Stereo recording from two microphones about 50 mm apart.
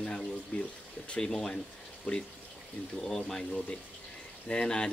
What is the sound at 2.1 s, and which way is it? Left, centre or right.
Speech, left.